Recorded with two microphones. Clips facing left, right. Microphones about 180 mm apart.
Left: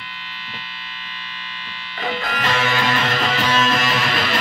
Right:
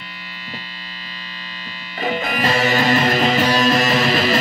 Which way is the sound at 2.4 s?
40° right (ahead or behind).